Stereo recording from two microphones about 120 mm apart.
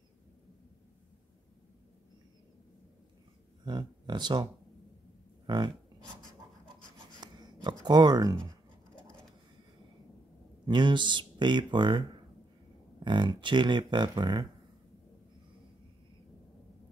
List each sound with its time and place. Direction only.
3.6 s speech: 35° right (ahead or behind)
5.5 s a sound: 40° right (ahead or behind)
7.2 s dog: 35° right (ahead or behind)
7.8 s speech: 35° right (ahead or behind)
10.7 s speech: 40° right (ahead or behind)
13.0 s speech: 40° right (ahead or behind)